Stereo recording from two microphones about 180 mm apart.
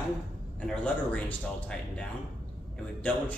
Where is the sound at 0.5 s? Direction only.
5° left (ahead or behind).